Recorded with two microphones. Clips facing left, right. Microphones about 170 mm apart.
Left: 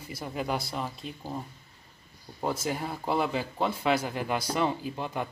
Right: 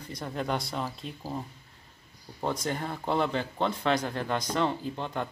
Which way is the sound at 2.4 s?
5° left (ahead or behind).